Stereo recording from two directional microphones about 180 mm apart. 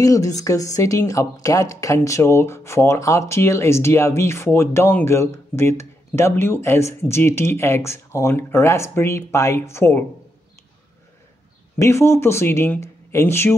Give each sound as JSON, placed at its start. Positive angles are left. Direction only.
{"t": 0.0, "sound": "speech", "side_deg": 20}
{"t": 11.8, "sound": "speech", "side_deg": 15}